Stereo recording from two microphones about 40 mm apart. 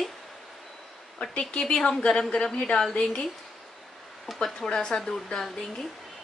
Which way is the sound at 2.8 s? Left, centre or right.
Left.